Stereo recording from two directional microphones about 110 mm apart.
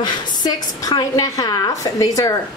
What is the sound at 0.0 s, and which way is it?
A woman's voice, 35° left (ahead or behind).